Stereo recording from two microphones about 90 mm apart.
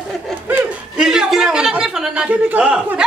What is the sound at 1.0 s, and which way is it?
A man's voice, 5° right (ahead or behind).